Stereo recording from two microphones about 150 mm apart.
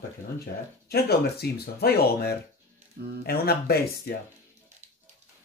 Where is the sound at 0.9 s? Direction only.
90° left.